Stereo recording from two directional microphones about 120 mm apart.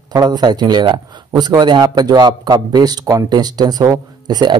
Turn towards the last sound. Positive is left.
turn(degrees=-35)  # may be behind; listen again after turning